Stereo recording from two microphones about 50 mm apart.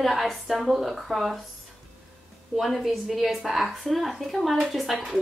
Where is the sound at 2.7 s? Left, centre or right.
Centre.